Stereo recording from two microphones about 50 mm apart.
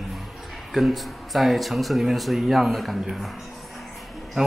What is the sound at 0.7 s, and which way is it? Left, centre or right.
A man's voice, centre.